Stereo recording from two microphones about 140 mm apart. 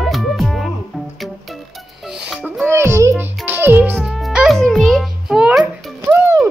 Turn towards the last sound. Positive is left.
turn(degrees=-20)  # may be behind; listen again after turning